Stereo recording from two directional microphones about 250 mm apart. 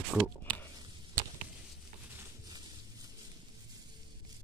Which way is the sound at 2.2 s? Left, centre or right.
Centre.